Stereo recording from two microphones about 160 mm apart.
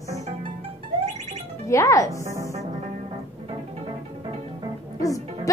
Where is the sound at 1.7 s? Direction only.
20° left (ahead or behind).